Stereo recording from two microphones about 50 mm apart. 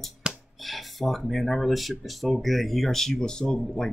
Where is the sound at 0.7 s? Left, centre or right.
Centre.